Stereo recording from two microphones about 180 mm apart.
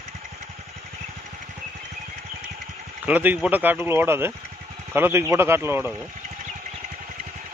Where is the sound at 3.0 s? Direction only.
10° right (ahead or behind).